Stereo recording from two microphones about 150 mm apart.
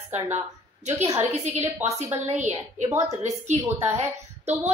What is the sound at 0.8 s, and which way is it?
A woman's voice, 50° right (ahead or behind).